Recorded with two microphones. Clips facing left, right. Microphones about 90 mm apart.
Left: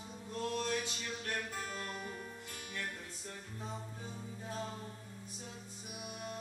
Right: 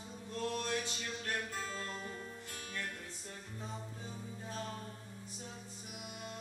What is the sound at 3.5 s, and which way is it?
Music, 10° left (ahead or behind).